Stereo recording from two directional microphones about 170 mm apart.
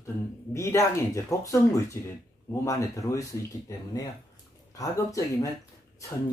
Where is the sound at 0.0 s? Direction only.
15° left (ahead or behind).